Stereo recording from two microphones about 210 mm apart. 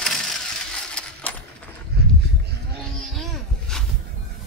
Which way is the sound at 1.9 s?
50° right (ahead or behind).